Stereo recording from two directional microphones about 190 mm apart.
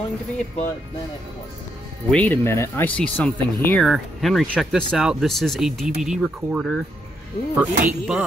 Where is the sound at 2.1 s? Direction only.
10° left (ahead or behind).